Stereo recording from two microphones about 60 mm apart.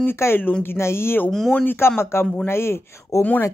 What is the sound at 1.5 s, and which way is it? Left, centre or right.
Speech, left.